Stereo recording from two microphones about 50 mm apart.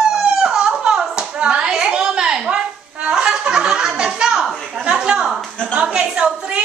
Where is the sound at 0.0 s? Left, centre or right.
Centre.